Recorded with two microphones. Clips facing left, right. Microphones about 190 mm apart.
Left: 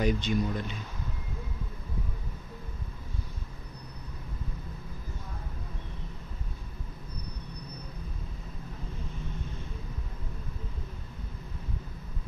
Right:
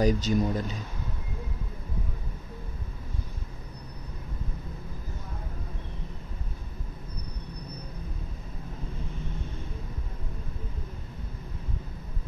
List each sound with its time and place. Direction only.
0.0 s speech: 40° right (ahead or behind)